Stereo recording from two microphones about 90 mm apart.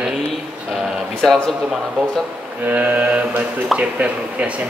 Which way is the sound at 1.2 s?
5° left (ahead or behind).